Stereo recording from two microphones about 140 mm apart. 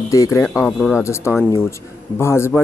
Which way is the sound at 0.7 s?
Centre (ahead or behind).